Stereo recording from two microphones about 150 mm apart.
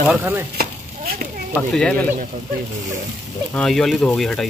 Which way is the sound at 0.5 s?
75° right (ahead or behind).